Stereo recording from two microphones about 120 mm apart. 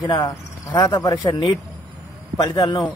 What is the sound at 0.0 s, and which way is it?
A man's voice, 35° left (ahead or behind).